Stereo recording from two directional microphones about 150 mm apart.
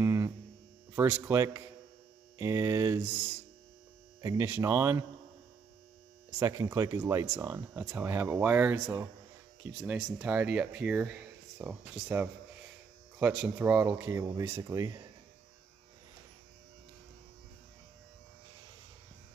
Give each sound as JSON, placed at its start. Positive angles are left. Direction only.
{"t": 0.0, "sound": "mains hum", "side_deg": -20}
{"t": 0.9, "sound": "speech", "side_deg": -15}
{"t": 4.2, "sound": "speech", "side_deg": -20}
{"t": 6.4, "sound": "speech", "side_deg": -20}